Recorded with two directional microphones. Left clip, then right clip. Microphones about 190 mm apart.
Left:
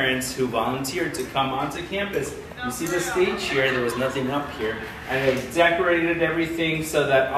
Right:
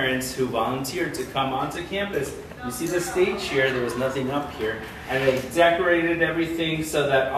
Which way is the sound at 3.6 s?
5° left (ahead or behind).